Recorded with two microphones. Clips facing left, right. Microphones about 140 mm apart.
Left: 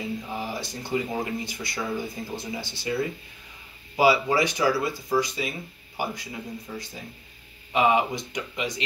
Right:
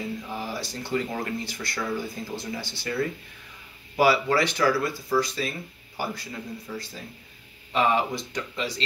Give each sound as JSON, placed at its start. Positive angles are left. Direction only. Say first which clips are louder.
{"t": 0.0, "sound": "speech", "louder": "left 1 dB", "side_deg": 15}